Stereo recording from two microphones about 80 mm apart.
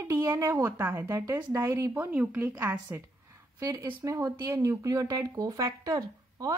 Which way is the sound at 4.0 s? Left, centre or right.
Right.